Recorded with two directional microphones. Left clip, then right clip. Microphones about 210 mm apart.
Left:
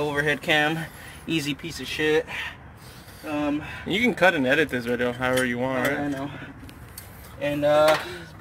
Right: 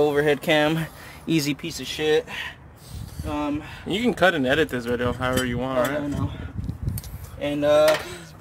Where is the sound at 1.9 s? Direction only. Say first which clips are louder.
Right 1 dB; 50° right (ahead or behind).